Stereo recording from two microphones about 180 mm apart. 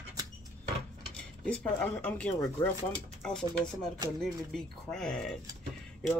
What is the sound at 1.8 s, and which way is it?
Speech, 10° left (ahead or behind).